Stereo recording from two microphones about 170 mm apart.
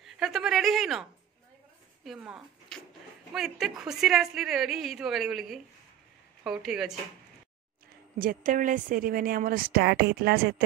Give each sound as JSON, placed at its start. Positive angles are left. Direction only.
{"t": 0.0, "sound": "a sound", "side_deg": 0}
{"t": 2.1, "sound": "speech", "side_deg": -5}
{"t": 8.2, "sound": "a woman's voice", "side_deg": -55}